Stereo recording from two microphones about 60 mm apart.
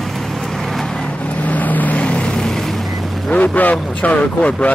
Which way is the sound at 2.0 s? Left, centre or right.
Centre.